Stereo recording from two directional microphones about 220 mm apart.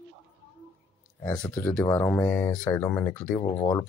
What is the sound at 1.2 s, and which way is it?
Speech, 10° left (ahead or behind).